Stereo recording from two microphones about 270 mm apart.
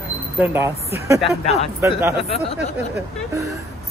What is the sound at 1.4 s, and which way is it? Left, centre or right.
Speech, left.